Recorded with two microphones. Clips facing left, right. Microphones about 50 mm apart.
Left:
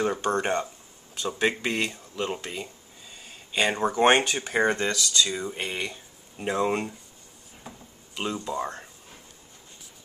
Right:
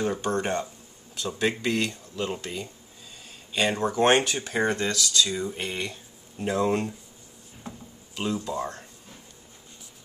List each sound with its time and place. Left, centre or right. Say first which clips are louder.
0.0 s speech: left 1 dB; centre
4.2 s speech: left 2 dB; centre
7.6 s a sound: right 4 dB; centre
8.4 s speech: even; centre